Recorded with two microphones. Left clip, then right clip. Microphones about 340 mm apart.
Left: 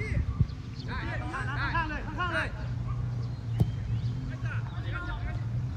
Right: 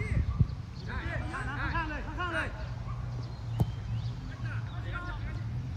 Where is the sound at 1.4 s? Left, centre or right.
Left.